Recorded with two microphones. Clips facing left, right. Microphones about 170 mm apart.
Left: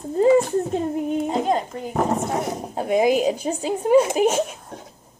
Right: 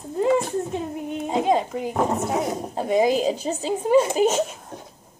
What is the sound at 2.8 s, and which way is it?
Speech, 5° left (ahead or behind).